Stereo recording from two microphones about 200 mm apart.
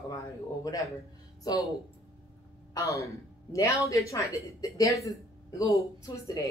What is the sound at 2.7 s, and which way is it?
A woman's voice, 15° left (ahead or behind).